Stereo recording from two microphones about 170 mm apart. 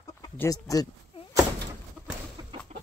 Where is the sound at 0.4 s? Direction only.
20° left (ahead or behind).